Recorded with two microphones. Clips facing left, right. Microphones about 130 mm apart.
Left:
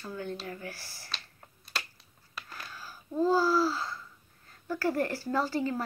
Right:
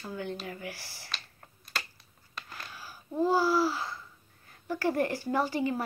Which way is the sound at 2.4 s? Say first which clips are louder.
Even; 5° left (ahead or behind).